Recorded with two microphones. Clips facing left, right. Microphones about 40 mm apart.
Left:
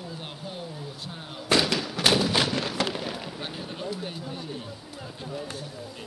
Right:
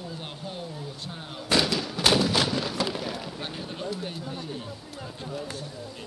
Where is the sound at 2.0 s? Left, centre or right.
Centre.